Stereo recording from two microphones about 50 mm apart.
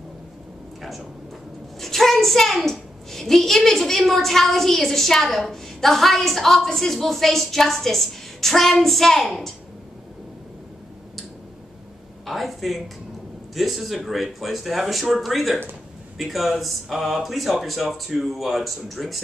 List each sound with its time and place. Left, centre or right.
1.8 s a child's voice: centre
12.3 s a child's voice: centre